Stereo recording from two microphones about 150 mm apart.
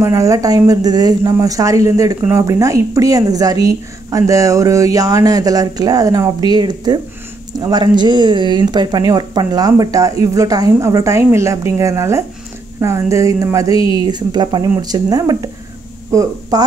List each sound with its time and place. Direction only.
0.0 s a woman's voice: 20° right (ahead or behind)